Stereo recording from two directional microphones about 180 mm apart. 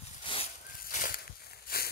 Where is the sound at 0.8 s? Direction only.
50° left (ahead or behind).